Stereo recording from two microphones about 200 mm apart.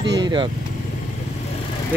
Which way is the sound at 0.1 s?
20° right (ahead or behind).